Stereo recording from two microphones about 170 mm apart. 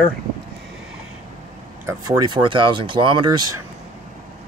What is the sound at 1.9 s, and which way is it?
Speech, 20° right (ahead or behind).